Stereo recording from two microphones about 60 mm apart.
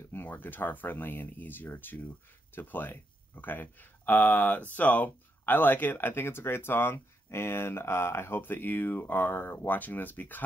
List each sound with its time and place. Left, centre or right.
0.1 s speech: left